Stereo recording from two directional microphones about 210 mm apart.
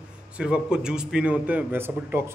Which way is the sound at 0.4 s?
5° right (ahead or behind).